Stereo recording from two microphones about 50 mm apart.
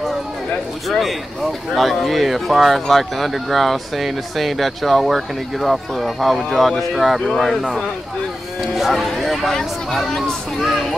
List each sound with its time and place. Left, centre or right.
0.8 s speech: centre
9.2 s speech: centre